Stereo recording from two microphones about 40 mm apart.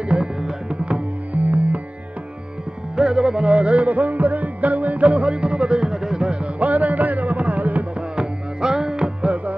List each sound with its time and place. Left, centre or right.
0.1 s music: right
1.3 s music: right
3.0 s music: centre
6.4 s music: right
8.2 s music: centre